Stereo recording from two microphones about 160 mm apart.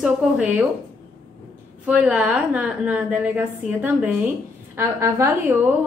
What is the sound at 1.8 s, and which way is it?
A woman's voice, 10° right (ahead or behind).